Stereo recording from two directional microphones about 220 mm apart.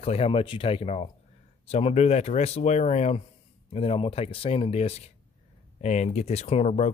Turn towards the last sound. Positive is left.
turn(degrees=30)  # may be behind; listen again after turning